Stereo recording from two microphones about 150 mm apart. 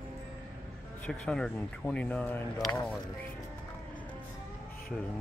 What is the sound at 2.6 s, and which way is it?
Speech, 25° left (ahead or behind).